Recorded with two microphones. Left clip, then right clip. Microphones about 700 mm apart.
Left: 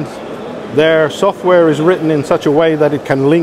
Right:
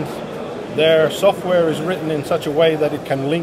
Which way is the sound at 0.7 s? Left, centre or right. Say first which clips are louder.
Left 4 dB; left.